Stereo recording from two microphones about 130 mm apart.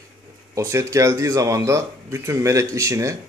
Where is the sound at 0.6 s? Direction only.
25° right (ahead or behind).